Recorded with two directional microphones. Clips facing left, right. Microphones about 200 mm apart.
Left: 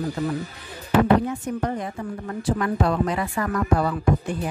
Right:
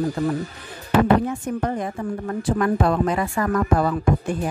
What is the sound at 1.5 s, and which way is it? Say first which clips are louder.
Speech: right 2 dB; 50° right (ahead or behind).